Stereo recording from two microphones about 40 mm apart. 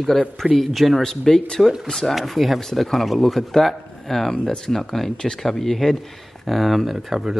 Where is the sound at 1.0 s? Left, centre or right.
Centre.